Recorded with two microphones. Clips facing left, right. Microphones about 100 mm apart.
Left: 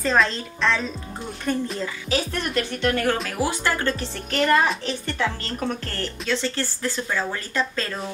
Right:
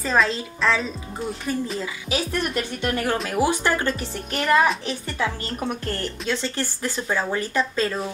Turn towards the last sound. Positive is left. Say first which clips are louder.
# right 3 dB
turn(degrees=-15)  # may be behind; listen again after turning